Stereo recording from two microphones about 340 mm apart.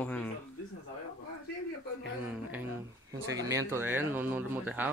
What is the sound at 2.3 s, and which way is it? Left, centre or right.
Speech, centre.